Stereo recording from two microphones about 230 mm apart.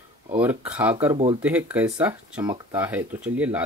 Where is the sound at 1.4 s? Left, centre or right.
Centre.